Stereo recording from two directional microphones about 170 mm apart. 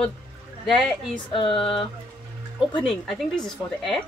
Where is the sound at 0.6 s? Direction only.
Centre (ahead or behind).